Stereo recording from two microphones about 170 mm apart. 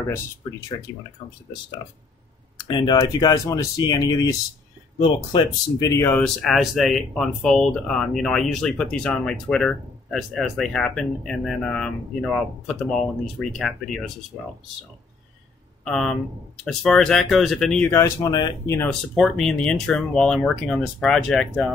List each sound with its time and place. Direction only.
0.9 s speech: 25° left (ahead or behind)
2.5 s speech: 25° left (ahead or behind); by 14.1 s centre (ahead or behind)
15.8 s speech: 5° left (ahead or behind); by 18.8 s 20° left (ahead or behind)
18.8 s speech: 5° left (ahead or behind)